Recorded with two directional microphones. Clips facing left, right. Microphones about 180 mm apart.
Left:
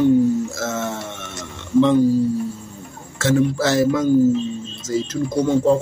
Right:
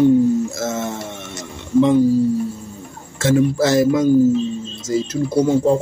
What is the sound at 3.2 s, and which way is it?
Speech, 15° right (ahead or behind).